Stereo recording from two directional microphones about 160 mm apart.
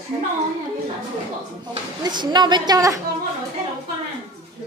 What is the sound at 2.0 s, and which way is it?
Speech, 25° right (ahead or behind).